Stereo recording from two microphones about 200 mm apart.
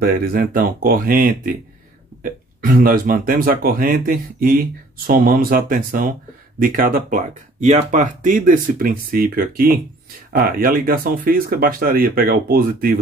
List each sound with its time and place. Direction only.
0.0 s speech: 45° right (ahead or behind)